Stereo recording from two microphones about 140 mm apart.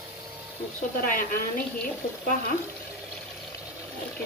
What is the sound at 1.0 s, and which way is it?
Speech, 75° left (ahead or behind).